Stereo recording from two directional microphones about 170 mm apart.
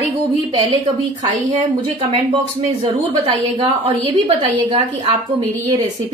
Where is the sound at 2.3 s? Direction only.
35° right (ahead or behind).